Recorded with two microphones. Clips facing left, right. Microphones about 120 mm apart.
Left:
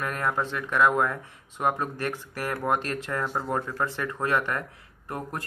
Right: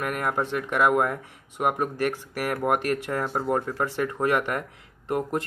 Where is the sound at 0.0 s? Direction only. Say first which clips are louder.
Right 1 dB; 15° right (ahead or behind).